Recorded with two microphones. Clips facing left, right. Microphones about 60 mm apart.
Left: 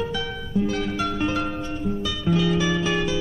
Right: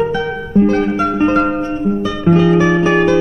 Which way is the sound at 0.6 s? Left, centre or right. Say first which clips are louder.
Right 11 dB; right.